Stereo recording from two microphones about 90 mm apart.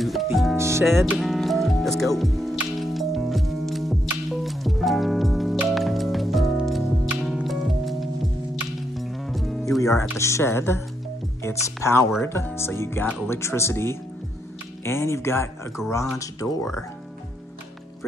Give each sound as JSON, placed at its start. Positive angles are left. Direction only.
{"t": 0.0, "sound": "music", "side_deg": 0}
{"t": 0.6, "sound": "music", "side_deg": -30}
{"t": 1.1, "sound": "music", "side_deg": 0}
{"t": 9.8, "sound": "speech", "side_deg": 35}